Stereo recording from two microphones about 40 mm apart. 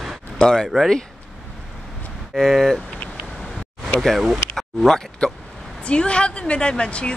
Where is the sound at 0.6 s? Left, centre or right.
Centre.